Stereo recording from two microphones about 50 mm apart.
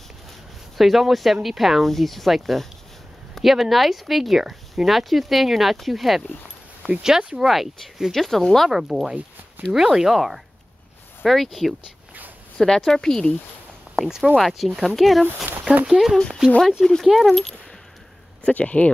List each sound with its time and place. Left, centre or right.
0.7 s speech: centre
6.2 s speech: centre
8.7 s speech: centre
13.9 s speech: centre
15.2 s speech: right
15.8 s speech: centre
18.4 s speech: left